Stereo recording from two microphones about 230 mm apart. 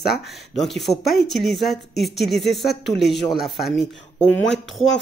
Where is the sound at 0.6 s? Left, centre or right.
Centre.